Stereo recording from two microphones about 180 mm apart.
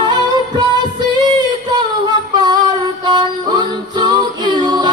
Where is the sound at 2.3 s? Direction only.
25° right (ahead or behind).